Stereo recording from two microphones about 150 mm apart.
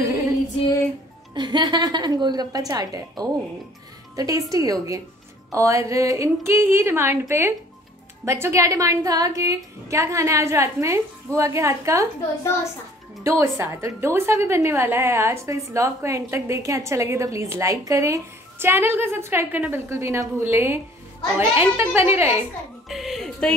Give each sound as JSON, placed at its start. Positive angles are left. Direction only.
{"t": 1.3, "sound": "a woman's voice", "side_deg": -30}
{"t": 13.2, "sound": "a woman's voice", "side_deg": -20}
{"t": 22.8, "sound": "speech", "side_deg": 0}